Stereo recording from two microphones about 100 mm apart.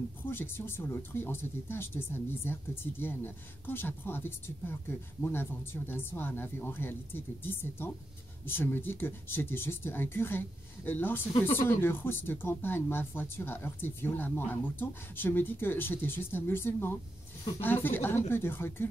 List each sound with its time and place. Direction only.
0.2 s speech: 20° left (ahead or behind)